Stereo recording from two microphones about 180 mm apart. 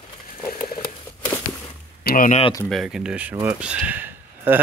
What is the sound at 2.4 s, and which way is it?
Speech, 20° left (ahead or behind).